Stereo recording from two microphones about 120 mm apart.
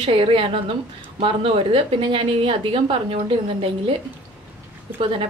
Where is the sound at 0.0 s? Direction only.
50° right (ahead or behind).